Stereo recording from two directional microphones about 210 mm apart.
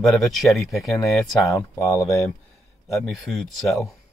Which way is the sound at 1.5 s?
15° left (ahead or behind).